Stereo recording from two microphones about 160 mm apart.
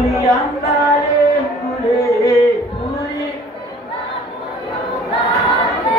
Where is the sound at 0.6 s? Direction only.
20° left (ahead or behind).